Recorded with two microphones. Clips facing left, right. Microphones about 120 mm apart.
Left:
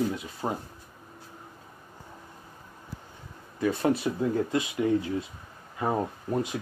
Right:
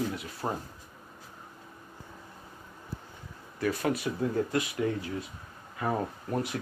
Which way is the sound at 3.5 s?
25° left (ahead or behind).